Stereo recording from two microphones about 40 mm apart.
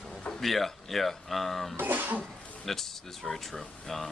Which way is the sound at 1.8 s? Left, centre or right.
Right.